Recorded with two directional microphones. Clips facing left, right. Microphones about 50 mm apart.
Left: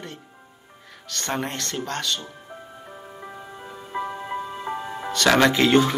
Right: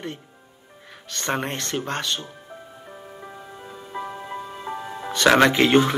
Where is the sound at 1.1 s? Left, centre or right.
Right.